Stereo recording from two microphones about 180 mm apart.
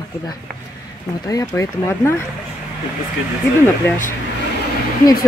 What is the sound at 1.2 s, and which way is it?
Speech, 20° left (ahead or behind).